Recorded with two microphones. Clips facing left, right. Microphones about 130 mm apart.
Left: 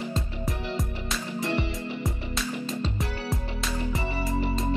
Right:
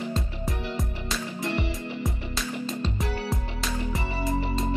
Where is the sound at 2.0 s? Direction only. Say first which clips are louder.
Even; centre (ahead or behind).